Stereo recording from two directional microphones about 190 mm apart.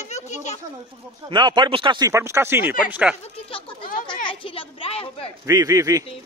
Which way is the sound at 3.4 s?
25° left (ahead or behind).